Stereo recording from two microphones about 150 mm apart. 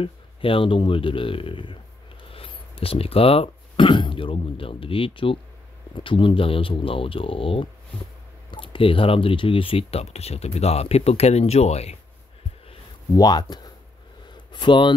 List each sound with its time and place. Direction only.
0.0 s speech: 35° left (ahead or behind)
13.1 s speech: 25° left (ahead or behind)
14.3 s a sound: 30° left (ahead or behind)